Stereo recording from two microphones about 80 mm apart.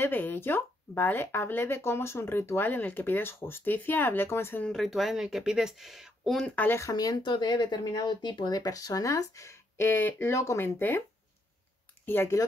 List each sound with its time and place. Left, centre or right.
0.0 s speech: left
4.6 s speech: centre
6.4 s speech: left
6.8 s speech: left
7.2 s speech: left
9.8 s speech: left
10.3 s speech: left
10.6 s speech: left
12.1 s speech: left